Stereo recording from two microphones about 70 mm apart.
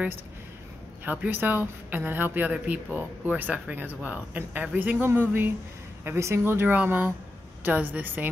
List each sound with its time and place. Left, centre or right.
1.0 s speech: right
6.1 s speech: right